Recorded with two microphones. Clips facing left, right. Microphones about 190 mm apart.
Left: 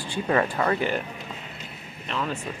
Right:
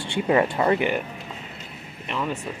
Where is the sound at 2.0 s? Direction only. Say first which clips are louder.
Right 2 dB; 15° right (ahead or behind).